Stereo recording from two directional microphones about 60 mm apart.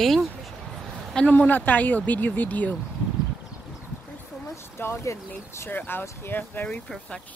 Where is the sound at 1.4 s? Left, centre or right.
Left.